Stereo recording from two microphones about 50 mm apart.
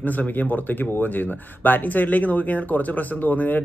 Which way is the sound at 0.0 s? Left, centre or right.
Left.